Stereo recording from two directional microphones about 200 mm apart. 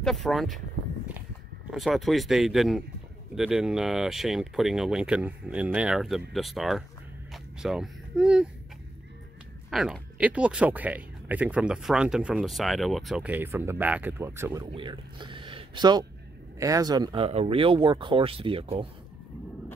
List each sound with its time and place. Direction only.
0.0 s speech: centre (ahead or behind)
1.7 s speech: centre (ahead or behind)
9.7 s speech: 5° right (ahead or behind); by 18.9 s 25° right (ahead or behind)